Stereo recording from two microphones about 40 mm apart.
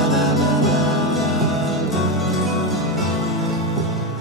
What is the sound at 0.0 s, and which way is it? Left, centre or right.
Music, centre.